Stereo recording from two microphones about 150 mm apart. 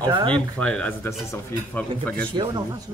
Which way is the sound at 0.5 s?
10° left (ahead or behind).